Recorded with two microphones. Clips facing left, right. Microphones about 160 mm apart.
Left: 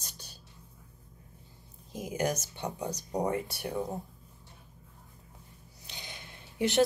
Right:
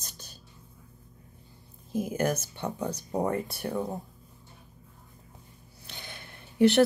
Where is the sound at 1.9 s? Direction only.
55° right (ahead or behind).